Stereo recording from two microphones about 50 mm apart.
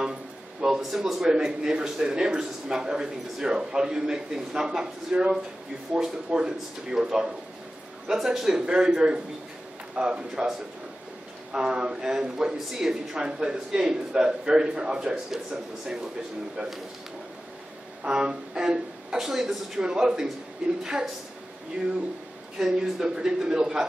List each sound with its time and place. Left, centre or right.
0.0 s a sound: centre
1.3 s speech: centre
11.5 s speech: centre
18.0 s speech: centre
22.6 s speech: centre